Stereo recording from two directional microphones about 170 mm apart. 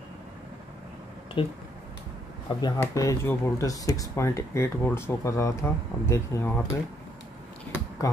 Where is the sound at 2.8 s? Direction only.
15° left (ahead or behind).